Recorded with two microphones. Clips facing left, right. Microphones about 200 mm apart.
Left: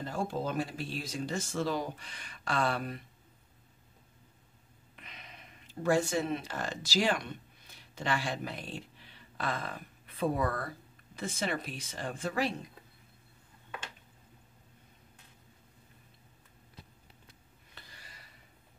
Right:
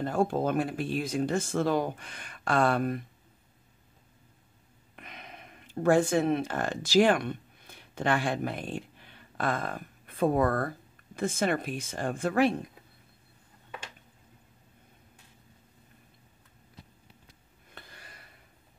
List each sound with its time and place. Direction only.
0.0 s speech: 55° right (ahead or behind)
4.9 s speech: 50° right (ahead or behind)
17.7 s a sound: 55° right (ahead or behind)